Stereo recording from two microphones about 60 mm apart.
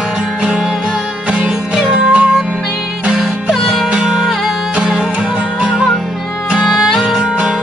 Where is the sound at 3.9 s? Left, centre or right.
Centre.